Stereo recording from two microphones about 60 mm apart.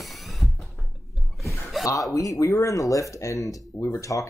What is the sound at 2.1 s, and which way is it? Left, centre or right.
Speech, left.